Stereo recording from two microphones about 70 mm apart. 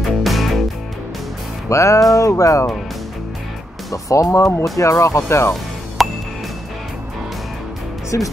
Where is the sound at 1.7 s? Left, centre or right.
Left.